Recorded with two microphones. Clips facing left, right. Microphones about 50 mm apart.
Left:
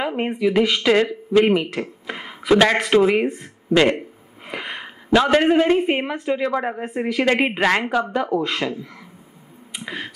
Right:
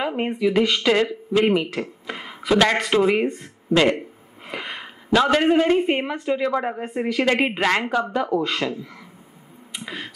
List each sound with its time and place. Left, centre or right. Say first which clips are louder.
0.0 s a woman's voice: left 1 dB; centre
1.4 s a sound: even; centre
2.7 s a woman's voice: left 3 dB; centre